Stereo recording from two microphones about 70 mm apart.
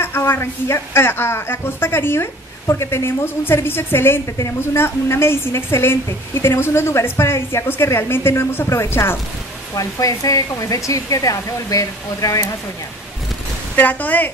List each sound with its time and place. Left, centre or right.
0.0 s a woman's voice: left
9.8 s speech: left
13.7 s speech: left